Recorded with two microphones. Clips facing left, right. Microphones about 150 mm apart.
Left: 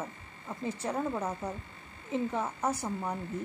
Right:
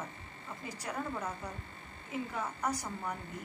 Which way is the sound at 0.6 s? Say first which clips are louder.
Left 7 dB; 30° left (ahead or behind).